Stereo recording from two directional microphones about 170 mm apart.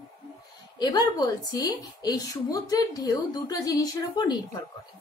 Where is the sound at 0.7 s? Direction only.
25° left (ahead or behind).